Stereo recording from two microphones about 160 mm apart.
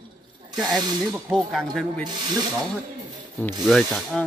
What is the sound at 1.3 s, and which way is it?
Speech, centre (ahead or behind).